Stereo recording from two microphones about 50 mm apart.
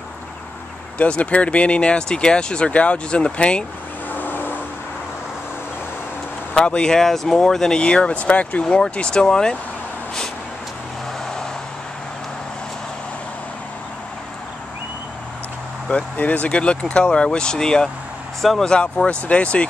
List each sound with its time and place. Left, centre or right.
0.9 s speech: left
4.1 s vehicle: left
6.5 s speech: centre
15.9 s speech: left; by 18.7 s centre
18.7 s speech: centre